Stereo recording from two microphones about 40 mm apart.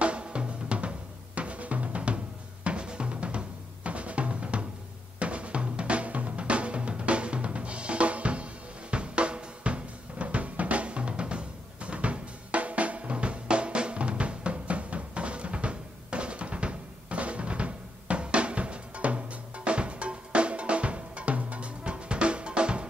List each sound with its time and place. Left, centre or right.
0.0 s drum: right